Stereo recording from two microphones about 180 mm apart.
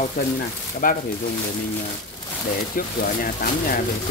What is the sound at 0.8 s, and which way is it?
Speech, 50° left (ahead or behind).